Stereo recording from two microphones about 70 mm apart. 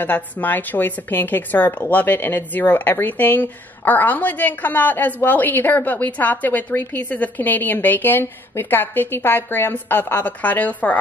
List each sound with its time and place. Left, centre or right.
0.0 s a woman's voice: left